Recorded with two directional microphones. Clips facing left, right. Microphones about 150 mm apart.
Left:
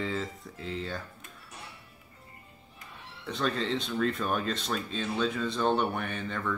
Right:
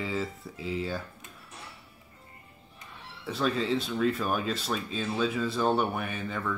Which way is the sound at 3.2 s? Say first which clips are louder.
Right 2 dB; 5° right (ahead or behind).